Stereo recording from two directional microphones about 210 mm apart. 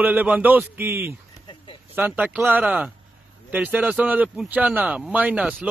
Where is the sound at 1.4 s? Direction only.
20° left (ahead or behind).